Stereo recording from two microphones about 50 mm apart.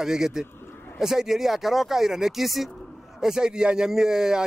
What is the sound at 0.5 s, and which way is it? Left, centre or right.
Bird, left.